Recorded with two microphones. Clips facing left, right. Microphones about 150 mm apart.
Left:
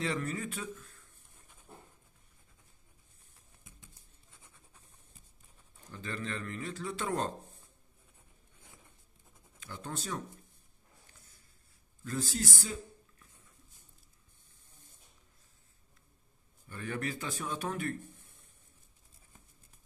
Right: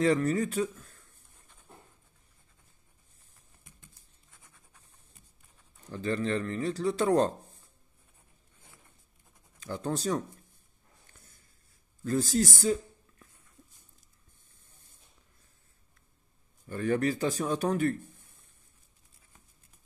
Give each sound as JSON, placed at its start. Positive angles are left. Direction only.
{"t": 0.0, "sound": "speech", "side_deg": -40}
{"t": 5.9, "sound": "speech", "side_deg": -35}
{"t": 9.6, "sound": "speech", "side_deg": -40}
{"t": 12.0, "sound": "speech", "side_deg": -40}
{"t": 16.6, "sound": "speech", "side_deg": -45}